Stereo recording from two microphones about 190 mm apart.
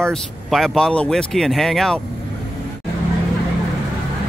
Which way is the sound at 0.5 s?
Centre (ahead or behind).